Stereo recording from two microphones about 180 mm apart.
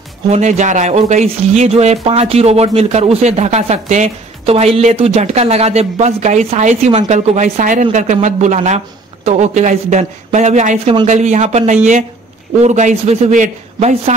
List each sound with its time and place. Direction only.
0.3 s speech: 40° right (ahead or behind)